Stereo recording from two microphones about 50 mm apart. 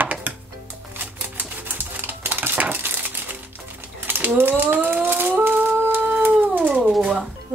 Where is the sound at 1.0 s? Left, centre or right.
Right.